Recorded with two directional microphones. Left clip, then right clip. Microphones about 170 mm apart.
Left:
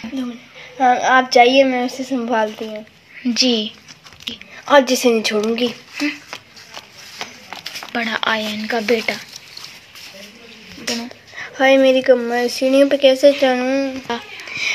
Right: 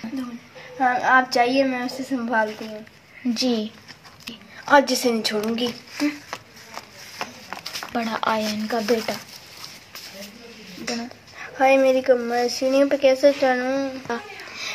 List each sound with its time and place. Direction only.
0.7 s speech: 50° left (ahead or behind)
3.3 s speech: 15° left (ahead or behind)
4.6 s speech: 45° left (ahead or behind)
5.9 s a sound: 5° left (ahead or behind)
8.7 s speech: 15° left (ahead or behind)
10.9 s speech: 40° left (ahead or behind)